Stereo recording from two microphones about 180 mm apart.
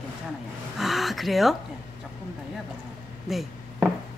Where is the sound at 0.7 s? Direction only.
Centre (ahead or behind).